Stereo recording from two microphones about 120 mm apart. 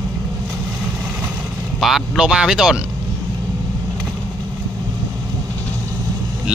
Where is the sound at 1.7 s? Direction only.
Centre (ahead or behind).